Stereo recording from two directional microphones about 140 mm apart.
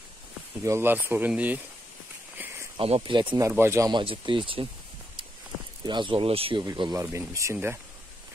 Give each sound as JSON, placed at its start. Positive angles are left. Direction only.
{"t": 0.7, "sound": "speech", "side_deg": -15}
{"t": 2.3, "sound": "a sound", "side_deg": -20}
{"t": 2.8, "sound": "speech", "side_deg": -40}
{"t": 3.3, "sound": "speech", "side_deg": -20}
{"t": 3.9, "sound": "speech", "side_deg": -40}
{"t": 5.9, "sound": "speech", "side_deg": -35}
{"t": 6.6, "sound": "speech", "side_deg": -25}